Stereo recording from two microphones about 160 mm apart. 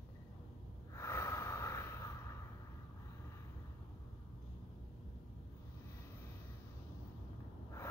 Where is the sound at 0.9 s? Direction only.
20° left (ahead or behind).